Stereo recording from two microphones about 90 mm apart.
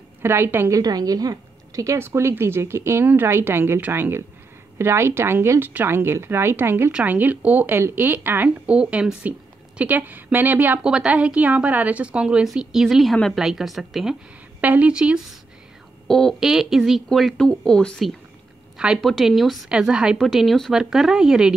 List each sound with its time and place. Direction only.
0.2 s a woman's voice: 25° right (ahead or behind)
0.7 s a woman's voice: 45° right (ahead or behind); by 6.9 s 25° right (ahead or behind)
6.9 s a woman's voice: 15° right (ahead or behind)
10.8 s a woman's voice: 10° right (ahead or behind)
14.6 s a woman's voice: 15° right (ahead or behind)
16.1 s speech: 5° left (ahead or behind)
19.7 s a woman's voice: 10° right (ahead or behind)